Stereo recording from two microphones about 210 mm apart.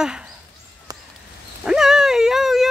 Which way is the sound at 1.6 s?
Centre (ahead or behind).